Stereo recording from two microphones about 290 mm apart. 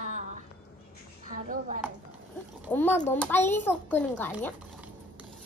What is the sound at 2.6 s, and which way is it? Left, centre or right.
Speech, centre.